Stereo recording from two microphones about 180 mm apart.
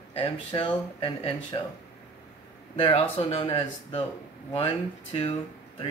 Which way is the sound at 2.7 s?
30° left (ahead or behind).